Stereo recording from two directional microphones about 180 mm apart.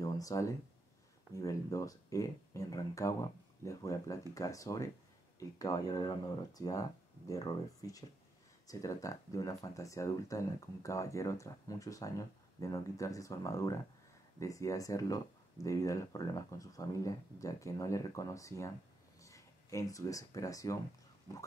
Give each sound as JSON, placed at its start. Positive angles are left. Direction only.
{"t": 0.0, "sound": "speech", "side_deg": 20}